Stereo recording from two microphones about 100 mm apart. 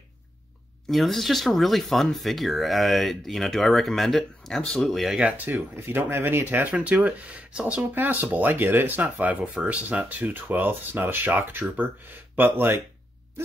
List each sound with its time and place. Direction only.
0.8 s speech: centre (ahead or behind)
5.4 s speech: 20° right (ahead or behind)